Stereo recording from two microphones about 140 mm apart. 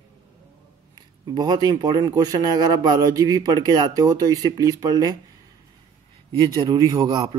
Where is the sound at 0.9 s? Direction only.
30° right (ahead or behind).